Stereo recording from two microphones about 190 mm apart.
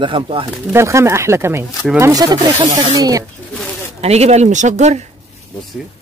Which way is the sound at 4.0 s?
35° right (ahead or behind).